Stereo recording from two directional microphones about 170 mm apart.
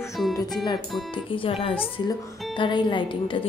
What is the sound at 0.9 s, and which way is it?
Speech, centre (ahead or behind).